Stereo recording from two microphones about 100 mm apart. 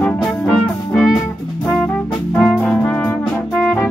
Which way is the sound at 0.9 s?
5° right (ahead or behind).